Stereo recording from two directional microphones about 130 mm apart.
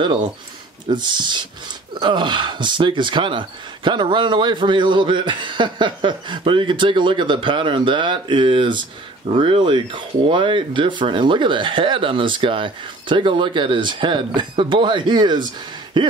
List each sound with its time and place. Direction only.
0.8 s speech: 35° right (ahead or behind)